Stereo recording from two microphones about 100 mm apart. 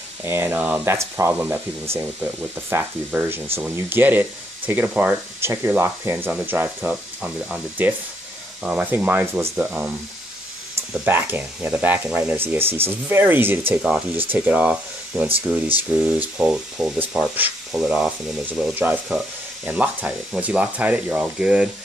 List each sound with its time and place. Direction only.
0.2 s speech: 25° right (ahead or behind)
0.9 s speech: 25° right (ahead or behind)
6.9 s speech: 10° right (ahead or behind)
11.1 s speech: 20° right (ahead or behind)
19.0 s speech: 5° right (ahead or behind)